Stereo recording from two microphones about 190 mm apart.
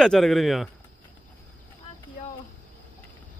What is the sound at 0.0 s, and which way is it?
Speech, centre (ahead or behind).